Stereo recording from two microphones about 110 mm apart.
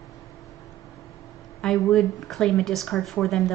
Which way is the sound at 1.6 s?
5° left (ahead or behind).